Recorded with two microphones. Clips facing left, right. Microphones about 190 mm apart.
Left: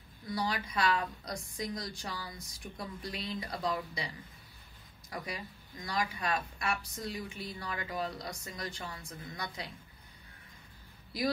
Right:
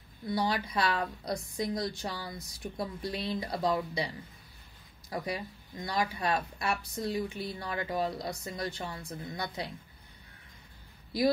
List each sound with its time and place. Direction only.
0.3 s speech: 30° right (ahead or behind)
5.1 s speech: 30° right (ahead or behind)